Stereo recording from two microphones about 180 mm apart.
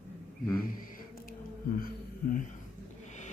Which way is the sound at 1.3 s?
50° left (ahead or behind).